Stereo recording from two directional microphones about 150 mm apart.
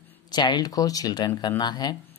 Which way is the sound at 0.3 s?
30° left (ahead or behind).